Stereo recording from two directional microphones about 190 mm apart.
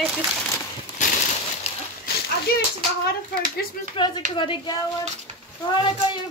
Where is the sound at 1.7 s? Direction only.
35° left (ahead or behind).